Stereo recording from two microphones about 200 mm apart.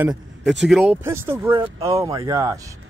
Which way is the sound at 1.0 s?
10° right (ahead or behind).